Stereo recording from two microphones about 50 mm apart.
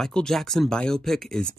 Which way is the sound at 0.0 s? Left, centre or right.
Centre.